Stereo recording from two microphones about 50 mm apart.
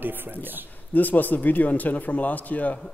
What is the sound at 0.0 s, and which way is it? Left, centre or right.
Speech, right.